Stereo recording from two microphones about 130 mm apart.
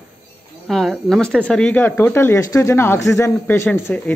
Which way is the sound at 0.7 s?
5° left (ahead or behind).